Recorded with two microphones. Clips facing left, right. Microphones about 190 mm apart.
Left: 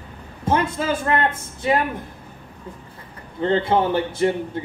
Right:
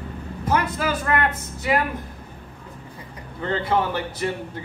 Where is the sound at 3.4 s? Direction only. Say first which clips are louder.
Left 4 dB; 25° left (ahead or behind).